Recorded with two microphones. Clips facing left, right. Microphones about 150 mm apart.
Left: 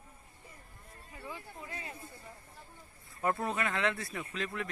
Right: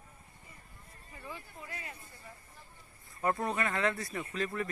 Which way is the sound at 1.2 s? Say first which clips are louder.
Left 1 dB; 20° left (ahead or behind).